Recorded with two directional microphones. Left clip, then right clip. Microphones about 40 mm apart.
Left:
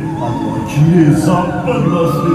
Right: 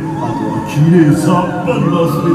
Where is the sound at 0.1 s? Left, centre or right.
Left.